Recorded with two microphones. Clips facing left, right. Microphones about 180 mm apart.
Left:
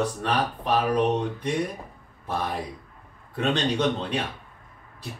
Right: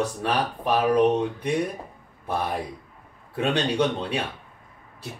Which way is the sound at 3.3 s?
10° right (ahead or behind).